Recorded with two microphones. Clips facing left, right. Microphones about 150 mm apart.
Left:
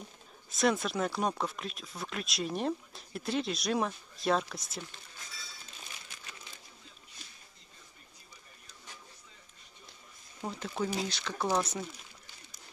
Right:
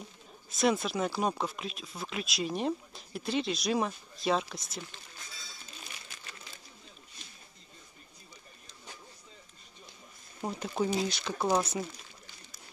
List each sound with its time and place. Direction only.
0.6 s speech: centre (ahead or behind)
10.4 s speech: 15° right (ahead or behind)